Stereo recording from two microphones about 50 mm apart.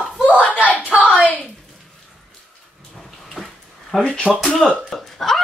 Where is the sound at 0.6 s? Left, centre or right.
Left.